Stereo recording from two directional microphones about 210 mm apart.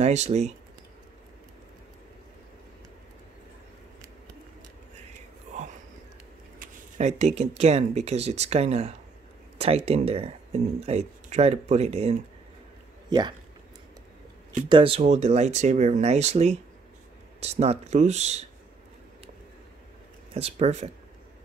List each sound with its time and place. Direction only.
0.0 s speech: 30° right (ahead or behind)
6.6 s speech: 35° right (ahead or behind)
14.7 s speech: 25° right (ahead or behind)
20.3 s speech: 30° right (ahead or behind)